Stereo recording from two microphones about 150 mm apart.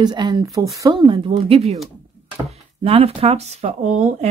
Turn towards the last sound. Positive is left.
turn(degrees=-45)  # may be behind; listen again after turning